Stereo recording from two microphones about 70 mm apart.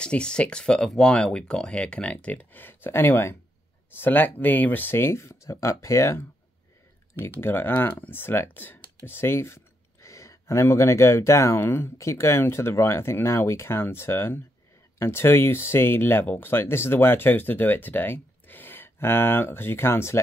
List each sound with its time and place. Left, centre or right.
0.0 s speech: centre; by 6.2 s left
7.2 s speech: left